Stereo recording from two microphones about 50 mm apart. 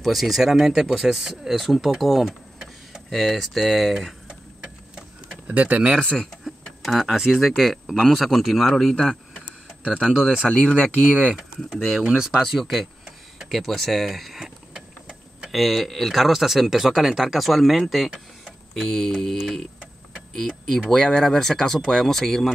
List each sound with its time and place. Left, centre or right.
0.0 s speech: centre
4.3 s clock: centre
5.5 s speech: right
5.9 s speech: centre
8.0 s speech: centre
10.2 s speech: centre
10.5 s speech: centre
11.3 s speech: centre
12.4 s speech: centre
14.4 s vehicle: centre
15.5 s speech: centre
18.8 s speech: centre